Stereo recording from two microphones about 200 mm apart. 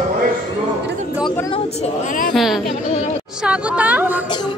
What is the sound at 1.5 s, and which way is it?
Speech, 35° left (ahead or behind).